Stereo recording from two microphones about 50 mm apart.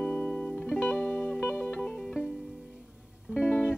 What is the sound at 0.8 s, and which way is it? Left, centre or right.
Music, left.